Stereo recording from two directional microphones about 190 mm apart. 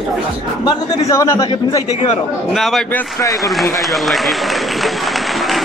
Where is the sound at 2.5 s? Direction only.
Centre (ahead or behind).